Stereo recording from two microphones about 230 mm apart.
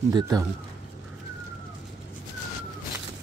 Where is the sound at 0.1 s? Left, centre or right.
Centre.